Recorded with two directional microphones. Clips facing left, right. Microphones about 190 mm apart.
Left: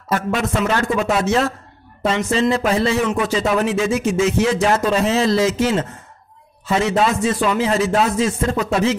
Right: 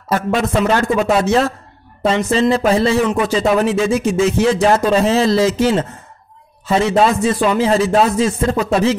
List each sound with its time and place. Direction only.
0.1 s speech: 30° right (ahead or behind)